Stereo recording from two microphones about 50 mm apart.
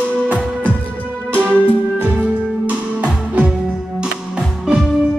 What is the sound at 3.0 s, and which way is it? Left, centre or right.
Music, right.